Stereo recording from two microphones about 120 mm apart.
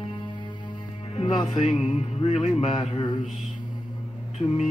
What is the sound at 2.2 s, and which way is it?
Speech, 65° left (ahead or behind).